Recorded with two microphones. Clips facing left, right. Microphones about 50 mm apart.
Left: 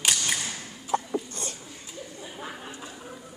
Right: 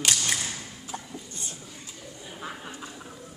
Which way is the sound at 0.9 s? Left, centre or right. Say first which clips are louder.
Left 12 dB; left.